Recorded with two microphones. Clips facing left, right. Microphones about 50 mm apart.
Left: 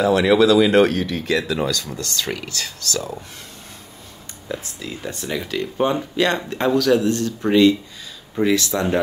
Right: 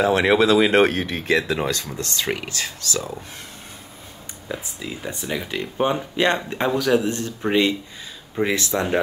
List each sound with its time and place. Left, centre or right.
0.0 s speech: right
4.5 s speech: centre